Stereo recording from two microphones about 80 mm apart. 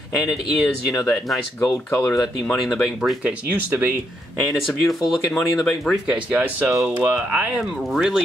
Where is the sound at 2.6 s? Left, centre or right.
Centre.